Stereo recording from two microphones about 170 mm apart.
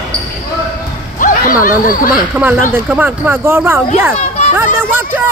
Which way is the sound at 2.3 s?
10° right (ahead or behind).